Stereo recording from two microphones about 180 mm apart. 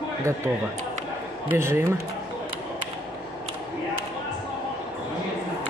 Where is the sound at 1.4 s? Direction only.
15° right (ahead or behind).